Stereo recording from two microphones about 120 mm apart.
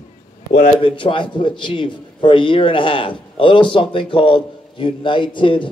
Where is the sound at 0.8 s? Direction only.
45° left (ahead or behind).